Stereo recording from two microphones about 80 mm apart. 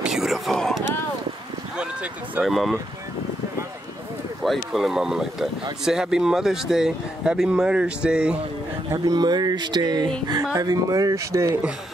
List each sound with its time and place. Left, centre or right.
0.0 s a sound: centre
2.4 s speech: centre
4.4 s speech: centre
8.9 s speech: right
10.6 s speech: right